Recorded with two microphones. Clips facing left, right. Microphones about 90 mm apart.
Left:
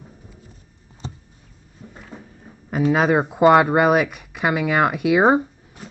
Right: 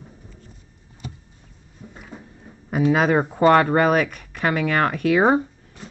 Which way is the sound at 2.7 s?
5° left (ahead or behind).